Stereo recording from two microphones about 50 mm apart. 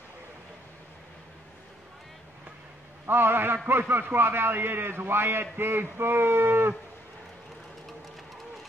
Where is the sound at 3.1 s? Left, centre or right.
Right.